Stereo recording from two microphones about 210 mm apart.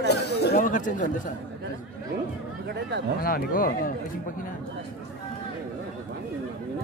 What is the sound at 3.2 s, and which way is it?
Speech, 45° left (ahead or behind).